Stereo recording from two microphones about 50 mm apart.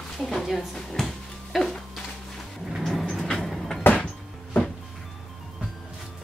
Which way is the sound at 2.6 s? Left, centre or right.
Centre.